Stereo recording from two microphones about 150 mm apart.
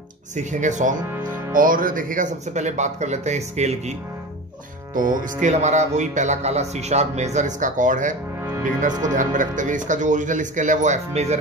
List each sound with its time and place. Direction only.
0.4 s speech: 55° right (ahead or behind)
1.5 s speech: 65° right (ahead or behind); by 3.9 s 50° right (ahead or behind)
4.9 s speech: 65° right (ahead or behind)